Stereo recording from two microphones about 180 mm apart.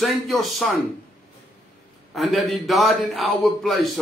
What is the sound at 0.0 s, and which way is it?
Speech, centre (ahead or behind).